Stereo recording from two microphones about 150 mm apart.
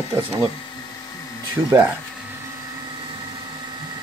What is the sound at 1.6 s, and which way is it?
Speech, 15° right (ahead or behind).